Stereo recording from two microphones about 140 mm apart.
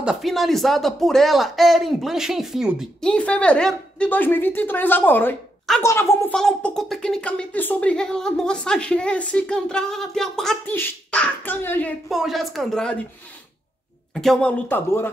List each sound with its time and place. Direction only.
0.0 s a woman's voice: centre (ahead or behind); by 6.3 s 20° left (ahead or behind)
6.3 s speech: 5° left (ahead or behind)
10.6 s speech: 15° left (ahead or behind)
12.1 s speech: centre (ahead or behind)
14.1 s speech: 5° left (ahead or behind)